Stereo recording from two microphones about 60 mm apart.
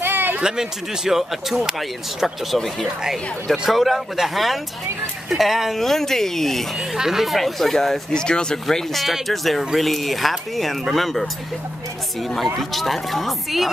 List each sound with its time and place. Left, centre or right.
0.0 s a sound: right
0.4 s speech: centre
6.8 s speech: centre